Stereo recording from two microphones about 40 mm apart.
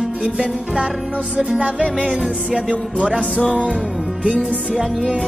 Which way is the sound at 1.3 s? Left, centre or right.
Right.